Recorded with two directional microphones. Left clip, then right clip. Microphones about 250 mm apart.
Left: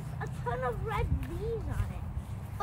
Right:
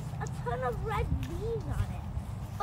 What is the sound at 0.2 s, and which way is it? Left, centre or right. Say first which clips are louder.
Speech: even; centre.